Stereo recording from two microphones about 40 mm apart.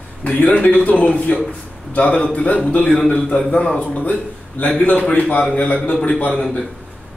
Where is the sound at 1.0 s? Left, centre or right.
Left.